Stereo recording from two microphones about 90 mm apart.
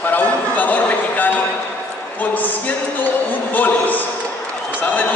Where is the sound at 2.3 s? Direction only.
20° left (ahead or behind).